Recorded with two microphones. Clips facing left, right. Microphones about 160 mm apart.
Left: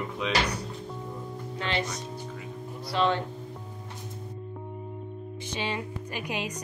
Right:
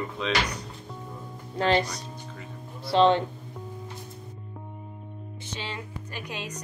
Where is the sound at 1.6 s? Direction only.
40° right (ahead or behind).